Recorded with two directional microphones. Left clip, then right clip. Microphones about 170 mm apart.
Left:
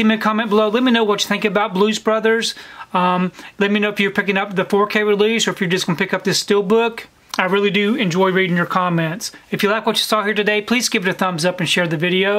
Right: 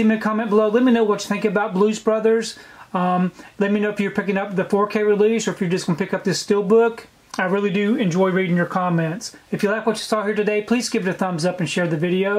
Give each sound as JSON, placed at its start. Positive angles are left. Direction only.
{"t": 0.0, "sound": "speech", "side_deg": 25}